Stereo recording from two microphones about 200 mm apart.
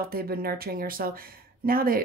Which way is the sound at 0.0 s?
50° right (ahead or behind).